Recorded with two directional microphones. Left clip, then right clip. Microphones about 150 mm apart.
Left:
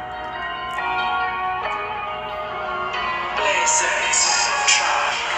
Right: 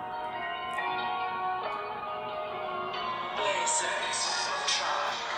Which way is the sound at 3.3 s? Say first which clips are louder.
Left 10 dB; 25° left (ahead or behind).